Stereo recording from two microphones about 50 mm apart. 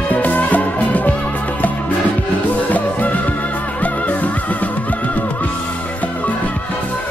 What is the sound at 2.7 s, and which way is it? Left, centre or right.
Music, left.